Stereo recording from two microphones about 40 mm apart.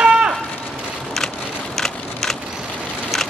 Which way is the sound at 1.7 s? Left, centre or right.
Centre.